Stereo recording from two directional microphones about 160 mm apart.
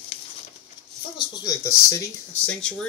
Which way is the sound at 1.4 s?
20° left (ahead or behind).